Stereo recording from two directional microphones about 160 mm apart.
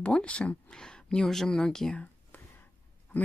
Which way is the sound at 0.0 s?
5° left (ahead or behind).